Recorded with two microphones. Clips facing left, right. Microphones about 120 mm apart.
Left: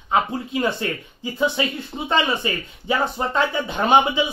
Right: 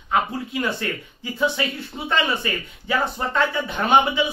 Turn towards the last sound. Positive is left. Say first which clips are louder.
# left 1 dB
turn(degrees=20)  # may be behind; listen again after turning